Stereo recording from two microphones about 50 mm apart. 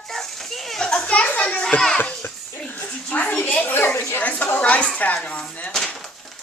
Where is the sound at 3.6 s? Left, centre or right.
Left.